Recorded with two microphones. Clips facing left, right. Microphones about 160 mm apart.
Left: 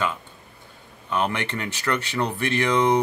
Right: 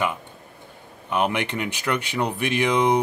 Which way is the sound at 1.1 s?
15° right (ahead or behind).